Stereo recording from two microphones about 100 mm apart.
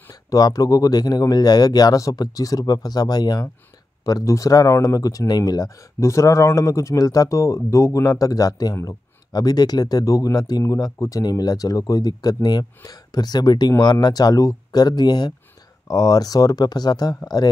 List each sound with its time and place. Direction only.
0.1 s speech: 40° left (ahead or behind)